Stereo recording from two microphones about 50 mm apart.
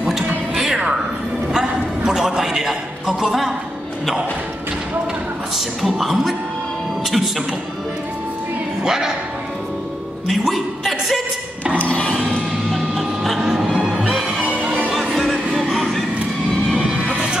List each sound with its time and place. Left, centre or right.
0.6 s music: centre
1.5 s a sound: centre
5.8 s a woman's voice: centre
8.8 s speech: centre
10.4 s a woman's voice: centre
12.7 s a sound: centre
13.7 s music: centre
14.4 s music: right
14.9 s music: centre
16.7 s music: centre